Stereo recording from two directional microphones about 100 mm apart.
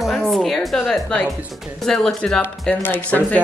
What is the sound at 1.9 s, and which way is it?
Speech, 5° left (ahead or behind).